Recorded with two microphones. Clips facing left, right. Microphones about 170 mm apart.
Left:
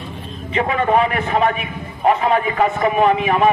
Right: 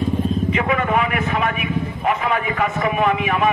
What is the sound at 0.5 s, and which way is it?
A man's voice, 30° left (ahead or behind).